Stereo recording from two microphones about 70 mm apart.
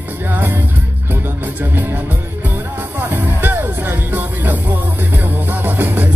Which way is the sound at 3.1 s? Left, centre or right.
Right.